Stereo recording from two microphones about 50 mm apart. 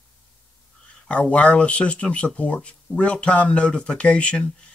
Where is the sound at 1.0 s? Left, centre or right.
Left.